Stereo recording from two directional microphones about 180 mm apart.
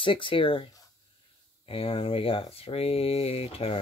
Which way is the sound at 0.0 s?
30° left (ahead or behind).